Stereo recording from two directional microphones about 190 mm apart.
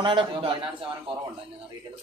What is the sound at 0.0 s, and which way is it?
Speech, 25° right (ahead or behind).